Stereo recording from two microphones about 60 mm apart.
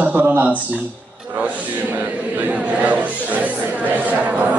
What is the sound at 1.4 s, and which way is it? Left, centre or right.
Speech, right.